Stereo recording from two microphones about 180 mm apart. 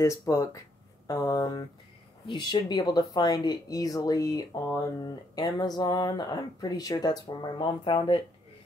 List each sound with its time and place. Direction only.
0.0 s speech: 15° left (ahead or behind)